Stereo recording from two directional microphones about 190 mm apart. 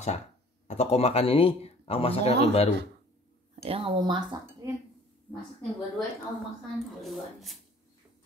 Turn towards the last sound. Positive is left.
turn(degrees=0)  # may be behind; listen again after turning